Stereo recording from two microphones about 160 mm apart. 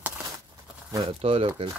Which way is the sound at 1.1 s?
35° right (ahead or behind).